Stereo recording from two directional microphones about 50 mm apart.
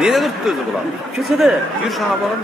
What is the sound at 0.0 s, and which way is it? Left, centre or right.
Speech, centre.